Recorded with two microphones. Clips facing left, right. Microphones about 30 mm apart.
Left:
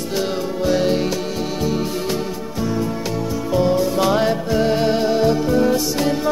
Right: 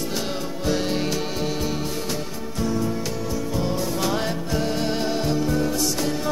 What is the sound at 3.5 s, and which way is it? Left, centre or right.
Music, centre.